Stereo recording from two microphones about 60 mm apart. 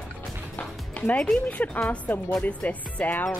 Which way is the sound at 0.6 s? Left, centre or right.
Left.